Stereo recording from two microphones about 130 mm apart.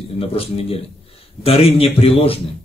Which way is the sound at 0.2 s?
45° left (ahead or behind).